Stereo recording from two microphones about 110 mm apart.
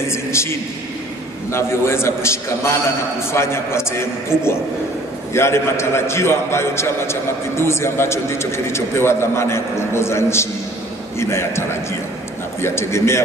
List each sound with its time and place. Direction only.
0.1 s a man's voice: 25° left (ahead or behind)